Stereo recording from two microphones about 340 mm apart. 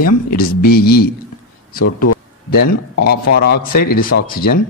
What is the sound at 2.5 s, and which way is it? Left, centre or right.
Speech, left.